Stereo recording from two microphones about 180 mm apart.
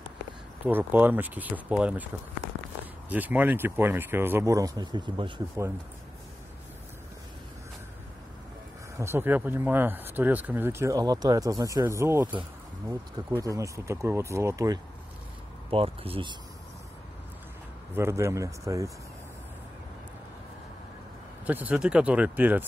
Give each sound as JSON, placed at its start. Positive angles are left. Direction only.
{"t": 0.7, "sound": "speech", "side_deg": -10}
{"t": 3.1, "sound": "speech", "side_deg": -10}
{"t": 8.9, "sound": "speech", "side_deg": -15}
{"t": 15.7, "sound": "speech", "side_deg": -30}
{"t": 17.9, "sound": "speech", "side_deg": -15}
{"t": 21.5, "sound": "speech", "side_deg": -10}